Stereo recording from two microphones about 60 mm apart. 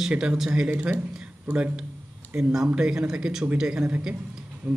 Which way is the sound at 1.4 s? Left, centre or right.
Right.